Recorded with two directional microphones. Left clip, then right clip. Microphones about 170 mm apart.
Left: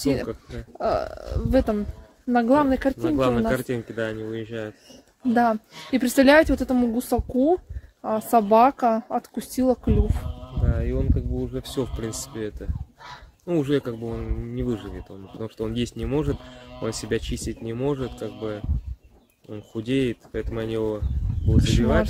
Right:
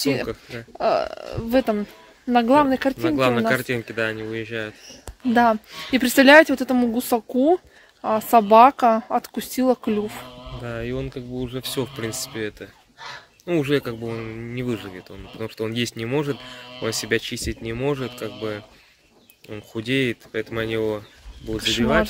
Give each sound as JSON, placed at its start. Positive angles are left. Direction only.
{"t": 0.0, "sound": "speech", "side_deg": -5}
{"t": 3.0, "sound": "speech", "side_deg": 25}
{"t": 5.3, "sound": "a woman's voice", "side_deg": -10}
{"t": 10.6, "sound": "speech", "side_deg": 5}
{"t": 21.5, "sound": "speech", "side_deg": -5}